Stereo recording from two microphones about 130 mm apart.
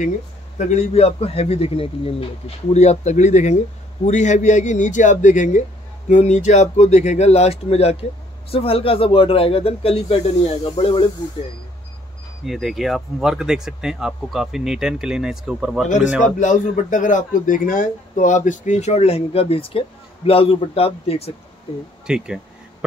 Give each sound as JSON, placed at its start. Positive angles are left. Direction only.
{"t": 0.6, "sound": "a man's voice", "side_deg": 55}
{"t": 12.4, "sound": "speech", "side_deg": 0}
{"t": 16.3, "sound": "speech", "side_deg": 70}
{"t": 22.0, "sound": "a sound", "side_deg": -5}